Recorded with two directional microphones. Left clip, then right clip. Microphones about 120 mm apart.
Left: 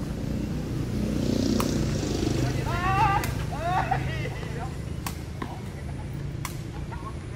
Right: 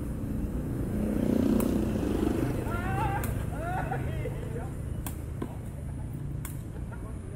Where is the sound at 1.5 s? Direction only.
45° right (ahead or behind).